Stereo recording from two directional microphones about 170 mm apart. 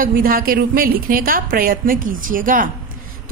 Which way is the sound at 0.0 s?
60° right (ahead or behind).